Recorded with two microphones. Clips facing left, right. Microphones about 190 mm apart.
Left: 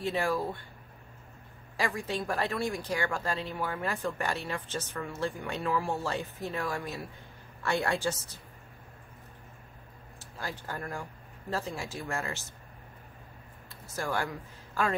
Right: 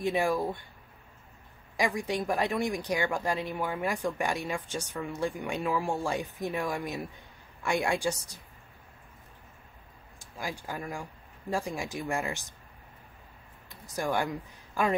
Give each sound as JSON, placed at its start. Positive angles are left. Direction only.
{"t": 0.0, "sound": "speech", "side_deg": -15}
{"t": 1.8, "sound": "speech", "side_deg": -15}
{"t": 10.1, "sound": "speech", "side_deg": -15}
{"t": 13.7, "sound": "speech", "side_deg": -15}